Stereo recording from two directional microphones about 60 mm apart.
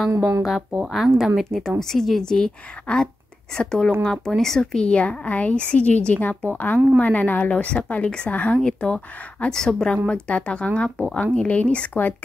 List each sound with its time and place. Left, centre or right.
0.4 s a woman's voice: centre
4.8 s a woman's voice: centre